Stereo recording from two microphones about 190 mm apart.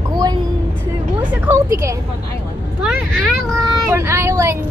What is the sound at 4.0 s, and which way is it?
Speech, 15° right (ahead or behind).